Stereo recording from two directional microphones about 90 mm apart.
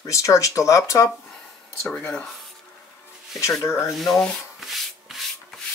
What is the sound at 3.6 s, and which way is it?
Speech, 30° left (ahead or behind).